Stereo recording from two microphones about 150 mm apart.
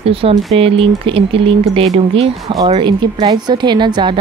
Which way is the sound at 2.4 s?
25° right (ahead or behind).